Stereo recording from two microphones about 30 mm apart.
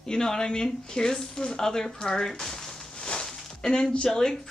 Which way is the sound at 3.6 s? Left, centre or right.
Left.